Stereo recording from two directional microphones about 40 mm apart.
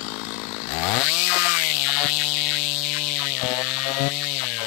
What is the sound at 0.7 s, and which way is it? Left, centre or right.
Chainsaw, centre.